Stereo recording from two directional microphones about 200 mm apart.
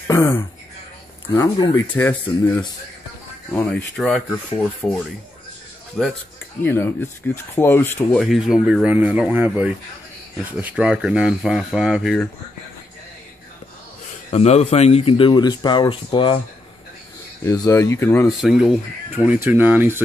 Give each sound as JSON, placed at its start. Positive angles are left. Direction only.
{"t": 0.1, "sound": "speech", "side_deg": 15}
{"t": 6.6, "sound": "speech", "side_deg": 10}
{"t": 14.3, "sound": "speech", "side_deg": 30}
{"t": 17.5, "sound": "speech", "side_deg": 15}
{"t": 18.4, "sound": "speech", "side_deg": 0}